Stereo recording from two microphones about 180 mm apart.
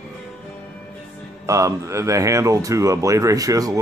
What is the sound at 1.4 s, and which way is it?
Speech, 20° right (ahead or behind).